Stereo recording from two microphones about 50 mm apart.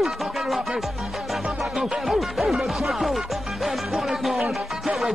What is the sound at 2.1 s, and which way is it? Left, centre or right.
Music, centre.